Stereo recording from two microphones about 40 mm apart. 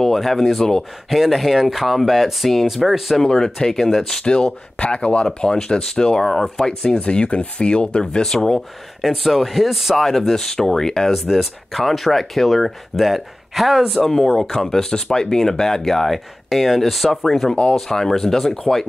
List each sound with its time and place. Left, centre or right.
0.0 s speech: centre
3.2 s speech: centre
4.2 s speech: left
7.0 s speech: left; by 8.6 s centre
9.0 s speech: centre
9.9 s speech: centre
11.3 s speech: centre